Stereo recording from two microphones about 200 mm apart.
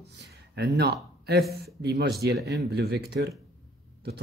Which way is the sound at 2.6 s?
55° right (ahead or behind).